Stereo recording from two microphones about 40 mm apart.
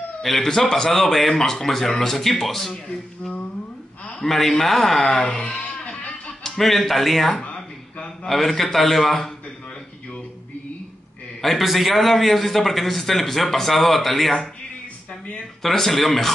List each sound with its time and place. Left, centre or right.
0.2 s speech: centre
4.3 s speech: centre; by 5.8 s left
5.9 s music: left
6.4 s a man's voice: centre
7.5 s a sound: left
8.3 s a man's voice: centre
11.4 s a man's voice: centre
15.6 s a man's voice: centre